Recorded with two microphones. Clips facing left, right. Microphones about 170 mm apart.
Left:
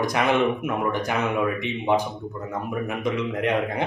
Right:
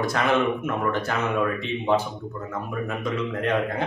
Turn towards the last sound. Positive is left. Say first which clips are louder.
# left 2 dB
turn(degrees=15)  # may be behind; listen again after turning